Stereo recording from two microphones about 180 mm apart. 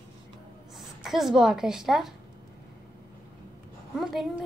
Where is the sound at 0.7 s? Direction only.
Centre (ahead or behind).